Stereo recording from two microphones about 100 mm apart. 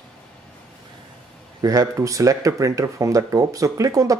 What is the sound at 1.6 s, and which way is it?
Speech, 35° right (ahead or behind).